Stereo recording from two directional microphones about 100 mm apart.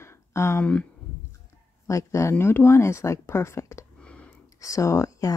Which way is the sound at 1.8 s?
30° left (ahead or behind).